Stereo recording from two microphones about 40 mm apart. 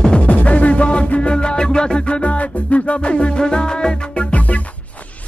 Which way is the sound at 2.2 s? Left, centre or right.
Left.